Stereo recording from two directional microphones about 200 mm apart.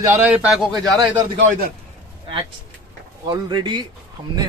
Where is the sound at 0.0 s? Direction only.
10° right (ahead or behind).